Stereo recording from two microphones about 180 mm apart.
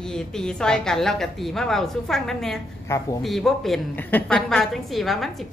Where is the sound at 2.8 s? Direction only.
15° left (ahead or behind).